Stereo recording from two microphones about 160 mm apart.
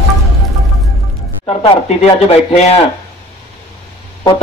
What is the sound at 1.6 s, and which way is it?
A man's voice, 35° left (ahead or behind).